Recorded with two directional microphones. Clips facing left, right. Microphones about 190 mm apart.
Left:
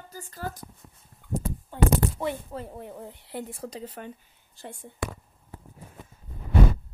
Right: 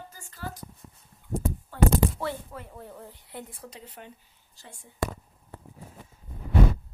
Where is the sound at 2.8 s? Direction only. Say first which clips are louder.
Left 4 dB; 20° left (ahead or behind).